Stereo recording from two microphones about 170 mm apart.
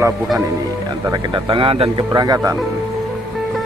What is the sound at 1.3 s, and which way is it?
Speech, 30° right (ahead or behind).